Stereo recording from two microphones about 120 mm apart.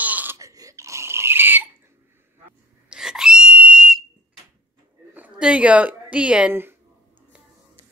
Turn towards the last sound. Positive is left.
turn(degrees=-20)  # may be behind; listen again after turning